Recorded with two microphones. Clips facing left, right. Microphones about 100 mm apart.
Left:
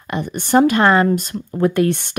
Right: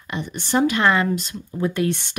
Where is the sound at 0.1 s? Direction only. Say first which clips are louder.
Left 7 dB; 50° left (ahead or behind).